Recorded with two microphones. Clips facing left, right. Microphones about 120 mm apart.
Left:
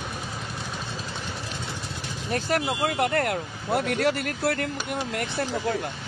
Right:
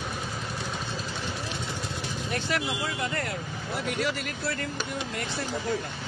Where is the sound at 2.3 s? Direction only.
45° left (ahead or behind).